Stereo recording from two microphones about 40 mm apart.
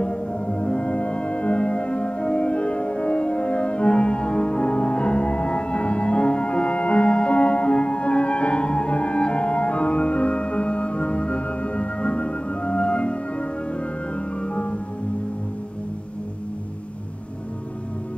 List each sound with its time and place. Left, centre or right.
0.0 s music: left